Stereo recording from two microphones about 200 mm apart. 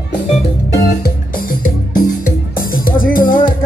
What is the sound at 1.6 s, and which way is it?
Music, 45° left (ahead or behind).